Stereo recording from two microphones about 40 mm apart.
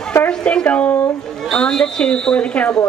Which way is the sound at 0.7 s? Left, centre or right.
Left.